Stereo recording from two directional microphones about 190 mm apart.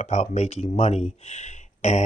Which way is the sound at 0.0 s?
40° left (ahead or behind).